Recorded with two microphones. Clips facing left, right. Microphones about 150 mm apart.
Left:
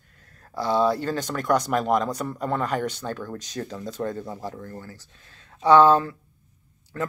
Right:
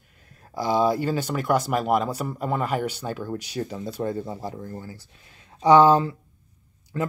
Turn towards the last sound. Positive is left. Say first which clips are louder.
# right 2 dB
turn(degrees=-15)  # may be behind; listen again after turning